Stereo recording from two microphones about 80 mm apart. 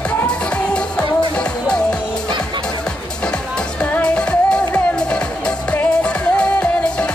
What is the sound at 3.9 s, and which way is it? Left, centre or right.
Music, centre.